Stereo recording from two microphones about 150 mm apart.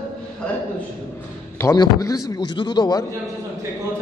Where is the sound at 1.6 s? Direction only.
20° left (ahead or behind).